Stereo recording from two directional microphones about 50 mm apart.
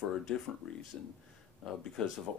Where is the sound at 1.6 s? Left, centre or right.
Centre.